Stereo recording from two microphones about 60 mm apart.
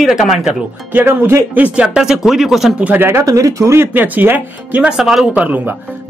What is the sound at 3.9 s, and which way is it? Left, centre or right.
Speech, right.